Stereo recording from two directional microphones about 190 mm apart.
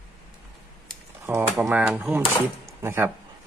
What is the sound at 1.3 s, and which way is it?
Speech, 10° right (ahead or behind).